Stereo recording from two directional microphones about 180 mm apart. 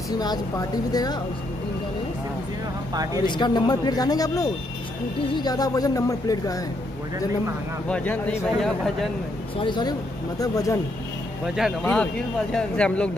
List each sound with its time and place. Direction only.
0.2 s speech: 20° left (ahead or behind)
3.3 s speech: 25° left (ahead or behind)
7.9 s speech: 10° left (ahead or behind)
9.6 s speech: 25° left (ahead or behind)
11.4 s speech: centre (ahead or behind)